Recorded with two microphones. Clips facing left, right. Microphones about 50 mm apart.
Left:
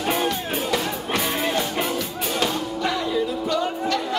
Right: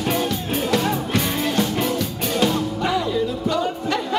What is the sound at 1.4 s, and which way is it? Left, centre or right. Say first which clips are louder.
Music: right 2 dB; centre.